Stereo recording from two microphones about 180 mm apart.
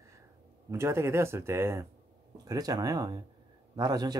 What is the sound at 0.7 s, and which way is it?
Speech, 15° right (ahead or behind).